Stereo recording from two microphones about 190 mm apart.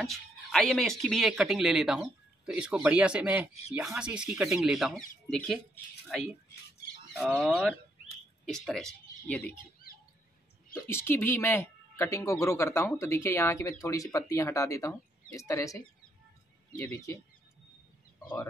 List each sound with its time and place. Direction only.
0.0 s speech: centre (ahead or behind)
10.7 s speech: 15° left (ahead or behind)